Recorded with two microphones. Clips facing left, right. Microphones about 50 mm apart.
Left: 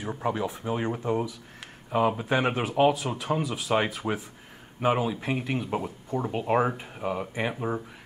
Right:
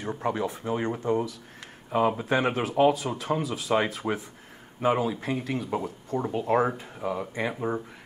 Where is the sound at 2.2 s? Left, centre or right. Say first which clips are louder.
Even; centre.